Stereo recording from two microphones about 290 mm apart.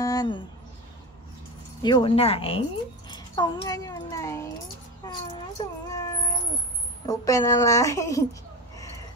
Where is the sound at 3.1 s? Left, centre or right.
Centre.